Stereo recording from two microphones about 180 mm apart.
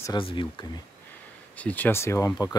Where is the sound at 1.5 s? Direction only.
10° left (ahead or behind).